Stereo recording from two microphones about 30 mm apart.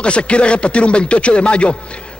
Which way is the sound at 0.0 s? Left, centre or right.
Left.